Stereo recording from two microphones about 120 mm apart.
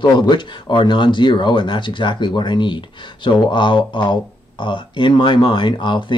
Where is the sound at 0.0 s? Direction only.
40° left (ahead or behind).